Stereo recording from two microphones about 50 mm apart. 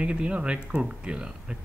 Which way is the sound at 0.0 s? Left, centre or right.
Right.